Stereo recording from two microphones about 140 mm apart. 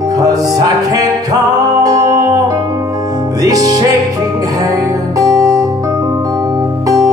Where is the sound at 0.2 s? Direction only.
25° right (ahead or behind).